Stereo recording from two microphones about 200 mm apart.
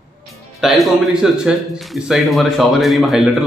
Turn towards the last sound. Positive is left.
turn(degrees=0)  # may be behind; listen again after turning